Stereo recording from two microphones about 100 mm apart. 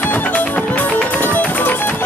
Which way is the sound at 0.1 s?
15° left (ahead or behind).